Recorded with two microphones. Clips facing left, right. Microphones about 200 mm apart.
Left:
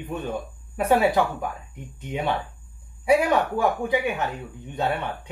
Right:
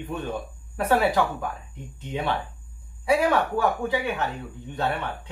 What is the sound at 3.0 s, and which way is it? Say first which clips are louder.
Speech: left 2 dB; 15° left (ahead or behind).